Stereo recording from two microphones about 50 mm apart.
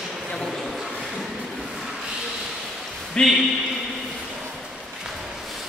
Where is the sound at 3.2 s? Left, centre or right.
Centre.